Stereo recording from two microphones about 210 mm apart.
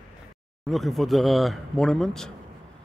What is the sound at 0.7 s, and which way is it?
Speech, centre (ahead or behind).